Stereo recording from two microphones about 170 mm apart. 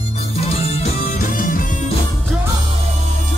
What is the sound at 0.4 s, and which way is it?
Music, 35° left (ahead or behind).